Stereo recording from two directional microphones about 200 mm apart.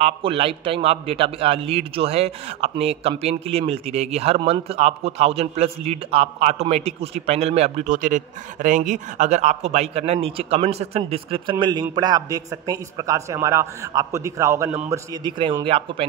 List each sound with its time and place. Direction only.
0.0 s a man's voice: 25° right (ahead or behind)